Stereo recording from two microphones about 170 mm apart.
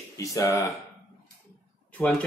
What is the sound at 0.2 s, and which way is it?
Speech, 20° left (ahead or behind).